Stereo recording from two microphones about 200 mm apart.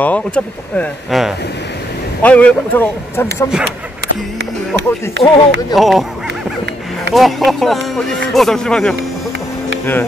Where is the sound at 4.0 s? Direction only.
55° right (ahead or behind).